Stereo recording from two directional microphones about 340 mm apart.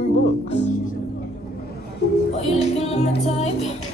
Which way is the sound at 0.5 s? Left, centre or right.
Left.